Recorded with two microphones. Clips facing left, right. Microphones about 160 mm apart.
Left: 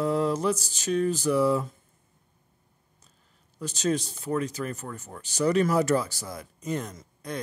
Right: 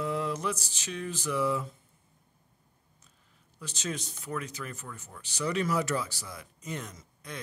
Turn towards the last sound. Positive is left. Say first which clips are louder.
# left 8 dB
turn(degrees=40)  # may be behind; listen again after turning